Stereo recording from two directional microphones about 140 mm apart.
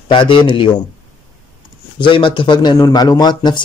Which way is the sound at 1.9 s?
35° left (ahead or behind).